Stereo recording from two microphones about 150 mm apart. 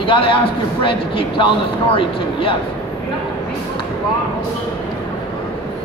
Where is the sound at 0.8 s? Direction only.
35° left (ahead or behind).